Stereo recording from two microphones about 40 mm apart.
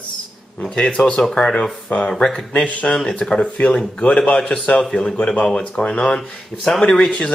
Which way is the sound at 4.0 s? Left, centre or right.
Left.